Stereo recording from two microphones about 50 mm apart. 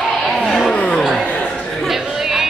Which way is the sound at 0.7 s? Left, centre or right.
Left.